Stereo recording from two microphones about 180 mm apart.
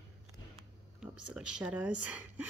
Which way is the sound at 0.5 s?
5° right (ahead or behind).